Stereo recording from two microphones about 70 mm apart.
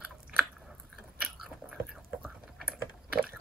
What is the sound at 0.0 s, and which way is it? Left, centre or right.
Biting, centre.